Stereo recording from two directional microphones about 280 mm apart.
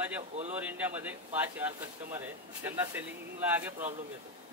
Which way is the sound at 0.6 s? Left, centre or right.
Centre.